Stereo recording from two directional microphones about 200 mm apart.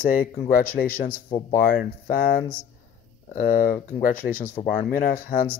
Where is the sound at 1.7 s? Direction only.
45° left (ahead or behind).